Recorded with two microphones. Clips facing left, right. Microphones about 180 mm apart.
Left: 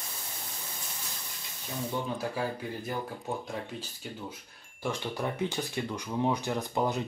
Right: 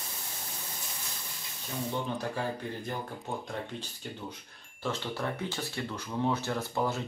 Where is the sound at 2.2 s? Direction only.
10° left (ahead or behind).